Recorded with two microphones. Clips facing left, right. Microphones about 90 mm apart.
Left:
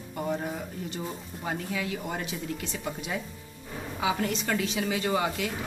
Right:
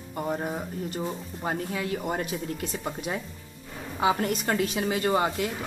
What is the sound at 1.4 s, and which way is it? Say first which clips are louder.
Speech: right 2 dB; 35° right (ahead or behind).